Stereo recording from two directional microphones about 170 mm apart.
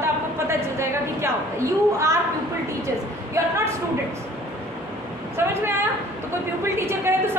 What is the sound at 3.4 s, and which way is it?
Speech, 15° right (ahead or behind).